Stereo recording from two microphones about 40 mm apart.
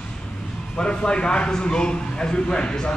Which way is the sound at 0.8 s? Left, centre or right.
Left.